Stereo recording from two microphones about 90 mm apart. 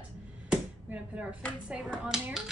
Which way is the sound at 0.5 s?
15° right (ahead or behind).